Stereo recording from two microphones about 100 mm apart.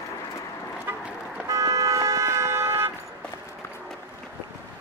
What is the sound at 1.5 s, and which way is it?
Toot, 35° right (ahead or behind).